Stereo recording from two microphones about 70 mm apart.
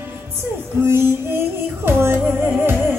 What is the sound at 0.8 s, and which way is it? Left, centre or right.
Female singing, right.